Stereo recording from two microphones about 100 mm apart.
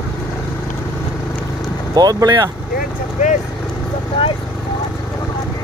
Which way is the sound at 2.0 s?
40° right (ahead or behind).